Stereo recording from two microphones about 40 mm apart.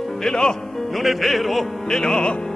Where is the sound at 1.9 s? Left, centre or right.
Centre.